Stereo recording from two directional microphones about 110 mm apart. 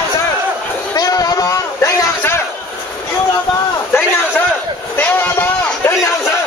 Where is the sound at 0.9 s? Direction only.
35° left (ahead or behind).